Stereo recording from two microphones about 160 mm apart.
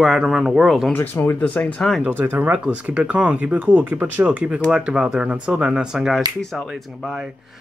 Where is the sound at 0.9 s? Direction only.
15° left (ahead or behind).